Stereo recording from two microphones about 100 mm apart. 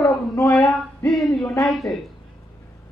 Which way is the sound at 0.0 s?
30° left (ahead or behind).